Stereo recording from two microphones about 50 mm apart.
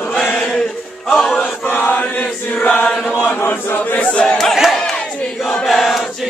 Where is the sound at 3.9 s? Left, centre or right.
Left.